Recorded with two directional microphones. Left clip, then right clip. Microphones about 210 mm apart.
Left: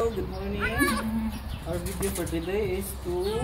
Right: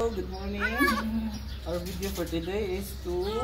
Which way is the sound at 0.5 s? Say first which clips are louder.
Even; 5° right (ahead or behind).